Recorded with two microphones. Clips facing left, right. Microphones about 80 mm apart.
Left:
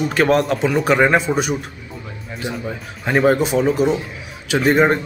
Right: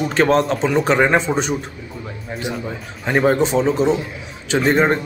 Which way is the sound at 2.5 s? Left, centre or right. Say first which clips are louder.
Even; centre.